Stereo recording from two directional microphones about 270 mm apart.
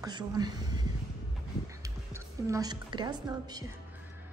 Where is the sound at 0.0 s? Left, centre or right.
Centre.